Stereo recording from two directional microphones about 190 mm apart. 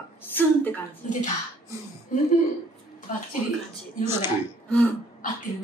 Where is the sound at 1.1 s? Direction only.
40° left (ahead or behind).